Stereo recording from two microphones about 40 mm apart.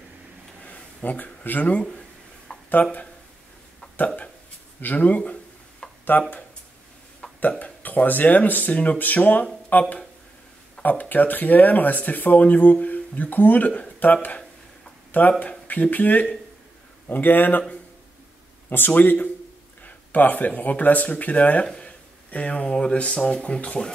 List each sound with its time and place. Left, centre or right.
0.7 s a sound: left
1.4 s speech: left
4.7 s speech: left
5.8 s a sound: centre
7.3 s speech: left
15.1 s speech: left
18.9 s speech: left